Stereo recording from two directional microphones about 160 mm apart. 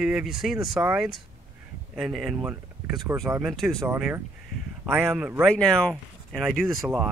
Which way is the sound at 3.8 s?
15° right (ahead or behind).